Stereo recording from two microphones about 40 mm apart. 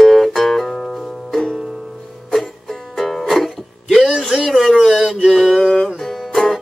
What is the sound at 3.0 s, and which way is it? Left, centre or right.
Music, centre.